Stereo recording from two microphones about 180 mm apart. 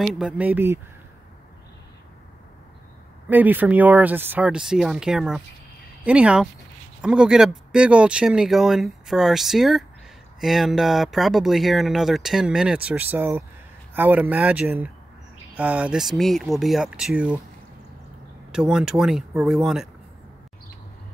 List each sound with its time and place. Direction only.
0.0 s speech: 5° right (ahead or behind)
3.3 s speech: 10° right (ahead or behind)
18.5 s speech: 5° right (ahead or behind)